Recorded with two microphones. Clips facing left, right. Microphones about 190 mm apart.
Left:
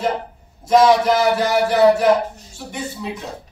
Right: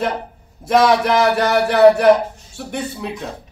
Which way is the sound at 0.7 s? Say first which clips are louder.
Left 1 dB; 60° right (ahead or behind).